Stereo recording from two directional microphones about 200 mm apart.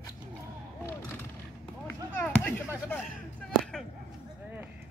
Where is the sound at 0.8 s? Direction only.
10° left (ahead or behind).